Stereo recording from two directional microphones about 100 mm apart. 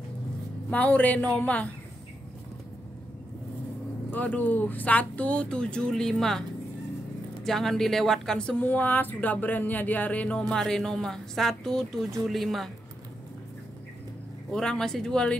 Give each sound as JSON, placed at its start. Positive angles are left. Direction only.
{"t": 0.7, "sound": "a woman's voice", "side_deg": 15}
{"t": 4.1, "sound": "a woman's voice", "side_deg": 15}
{"t": 7.4, "sound": "a woman's voice", "side_deg": 5}
{"t": 14.5, "sound": "a woman's voice", "side_deg": 5}